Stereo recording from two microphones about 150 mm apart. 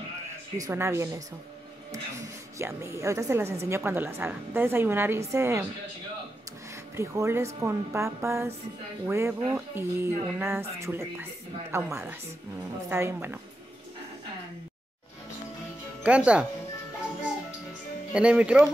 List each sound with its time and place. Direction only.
0.6 s a woman's voice: 20° right (ahead or behind)
2.6 s speech: 20° right (ahead or behind)
7.0 s a woman's voice: 20° right (ahead or behind)
16.0 s speech: 10° right (ahead or behind)
18.1 s speech: 5° right (ahead or behind)